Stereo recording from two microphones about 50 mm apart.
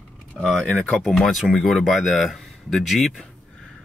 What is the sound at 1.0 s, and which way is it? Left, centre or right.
Speech, centre.